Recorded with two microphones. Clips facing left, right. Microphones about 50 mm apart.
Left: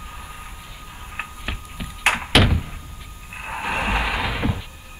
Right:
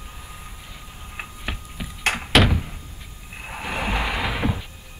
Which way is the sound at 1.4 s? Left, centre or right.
Centre.